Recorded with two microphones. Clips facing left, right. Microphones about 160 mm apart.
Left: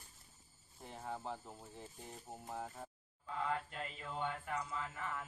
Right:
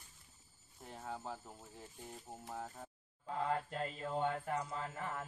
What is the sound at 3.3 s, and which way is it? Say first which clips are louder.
Mantra: right 2 dB; 40° right (ahead or behind).